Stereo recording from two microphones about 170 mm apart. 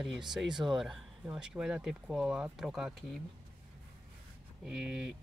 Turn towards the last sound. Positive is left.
turn(degrees=-5)  # may be behind; listen again after turning